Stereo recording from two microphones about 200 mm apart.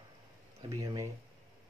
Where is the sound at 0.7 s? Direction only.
20° right (ahead or behind).